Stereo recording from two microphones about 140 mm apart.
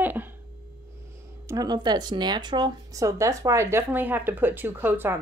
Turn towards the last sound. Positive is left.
turn(degrees=-15)  # may be behind; listen again after turning